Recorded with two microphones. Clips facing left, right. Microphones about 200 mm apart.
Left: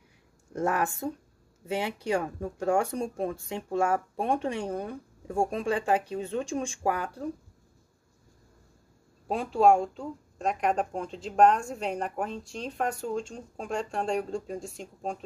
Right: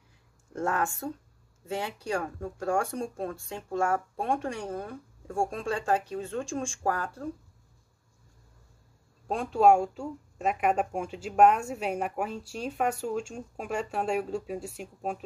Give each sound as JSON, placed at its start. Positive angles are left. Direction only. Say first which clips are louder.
{"t": 0.5, "sound": "speech", "louder": "left 2 dB", "side_deg": 15}
{"t": 9.3, "sound": "speech", "louder": "even", "side_deg": 0}